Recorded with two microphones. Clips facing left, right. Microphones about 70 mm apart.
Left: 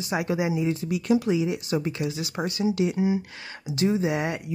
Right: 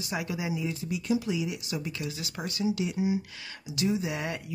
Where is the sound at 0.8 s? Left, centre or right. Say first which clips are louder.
Left 5 dB; left.